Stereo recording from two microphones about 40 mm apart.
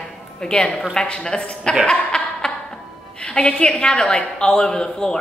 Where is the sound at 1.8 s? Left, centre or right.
Centre.